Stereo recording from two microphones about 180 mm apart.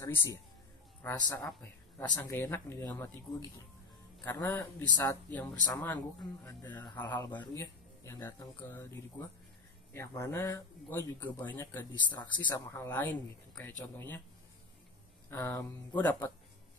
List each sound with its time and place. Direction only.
0.0 s speech: 15° left (ahead or behind)
2.0 s speech: 15° left (ahead or behind)
6.8 s speech: 20° left (ahead or behind)
15.2 s speech: 15° left (ahead or behind)